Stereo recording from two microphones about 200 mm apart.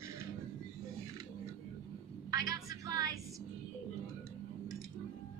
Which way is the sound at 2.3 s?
20° right (ahead or behind).